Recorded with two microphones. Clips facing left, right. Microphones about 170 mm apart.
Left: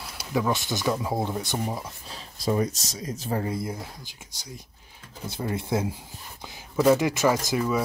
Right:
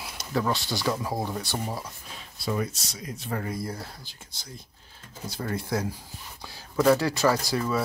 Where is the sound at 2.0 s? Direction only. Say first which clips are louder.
Left 6 dB; 35° left (ahead or behind).